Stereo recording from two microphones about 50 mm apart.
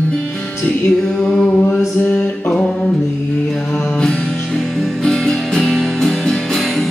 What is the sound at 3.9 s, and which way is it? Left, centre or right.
Music, centre.